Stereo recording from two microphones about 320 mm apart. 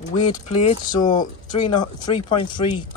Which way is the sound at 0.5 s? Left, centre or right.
Centre.